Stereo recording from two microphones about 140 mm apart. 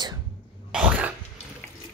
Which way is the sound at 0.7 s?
10° right (ahead or behind).